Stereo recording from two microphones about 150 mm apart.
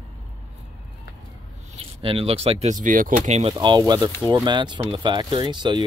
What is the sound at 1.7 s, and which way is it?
Speech, 40° right (ahead or behind).